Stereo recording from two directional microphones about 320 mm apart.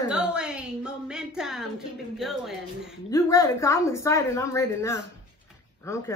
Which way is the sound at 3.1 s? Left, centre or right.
Centre.